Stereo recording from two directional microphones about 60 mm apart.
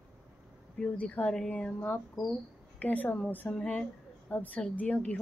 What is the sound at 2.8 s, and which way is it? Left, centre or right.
A woman's voice, left.